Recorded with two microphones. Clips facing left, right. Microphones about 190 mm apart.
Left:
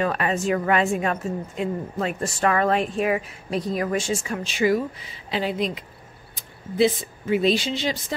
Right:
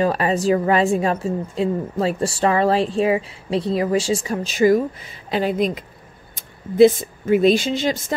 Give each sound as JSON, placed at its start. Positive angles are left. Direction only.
{"t": 0.0, "sound": "a woman's voice", "side_deg": -35}